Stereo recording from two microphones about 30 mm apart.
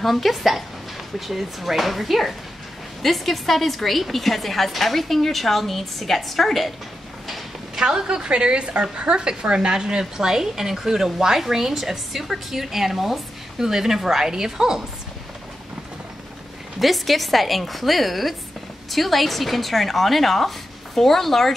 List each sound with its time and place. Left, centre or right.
0.0 s a woman's voice: centre
7.2 s a sound: centre
7.8 s a woman's voice: right
16.8 s a woman's voice: centre